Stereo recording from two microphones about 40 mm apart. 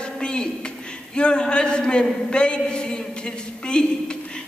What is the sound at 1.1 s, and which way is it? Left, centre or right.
A man's voice, left.